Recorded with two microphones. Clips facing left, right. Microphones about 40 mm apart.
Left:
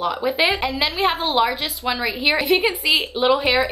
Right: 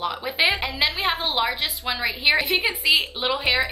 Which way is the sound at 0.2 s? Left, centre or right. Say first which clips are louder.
Left 2 dB; centre.